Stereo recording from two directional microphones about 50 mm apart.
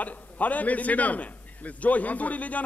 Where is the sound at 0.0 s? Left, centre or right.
Left.